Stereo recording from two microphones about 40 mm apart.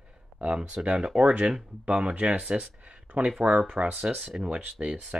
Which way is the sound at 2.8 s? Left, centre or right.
Right.